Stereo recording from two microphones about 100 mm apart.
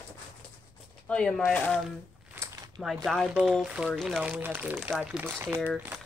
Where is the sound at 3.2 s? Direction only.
10° right (ahead or behind).